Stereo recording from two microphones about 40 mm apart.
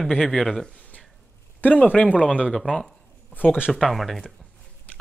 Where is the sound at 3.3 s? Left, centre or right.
Left.